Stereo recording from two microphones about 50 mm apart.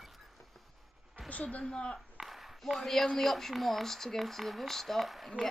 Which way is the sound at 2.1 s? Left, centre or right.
Centre.